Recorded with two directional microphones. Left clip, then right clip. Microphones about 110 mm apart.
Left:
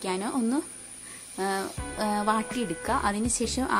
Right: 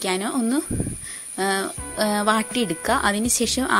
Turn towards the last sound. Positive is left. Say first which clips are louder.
# right 6 dB
turn(degrees=-25)  # may be behind; listen again after turning